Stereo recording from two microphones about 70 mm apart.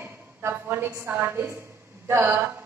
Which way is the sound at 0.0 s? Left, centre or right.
Right.